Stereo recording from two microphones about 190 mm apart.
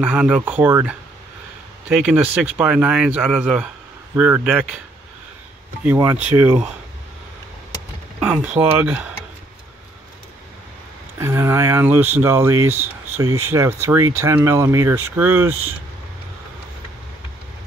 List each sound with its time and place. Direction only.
0.0 s speech: 10° right (ahead or behind)
2.0 s speech: 5° right (ahead or behind)
5.9 s speech: 10° right (ahead or behind)
8.2 s speech: 10° right (ahead or behind)
11.1 s speech: 15° right (ahead or behind)